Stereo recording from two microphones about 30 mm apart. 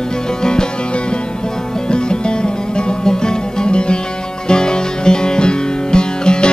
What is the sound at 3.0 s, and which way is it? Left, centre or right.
Music, left.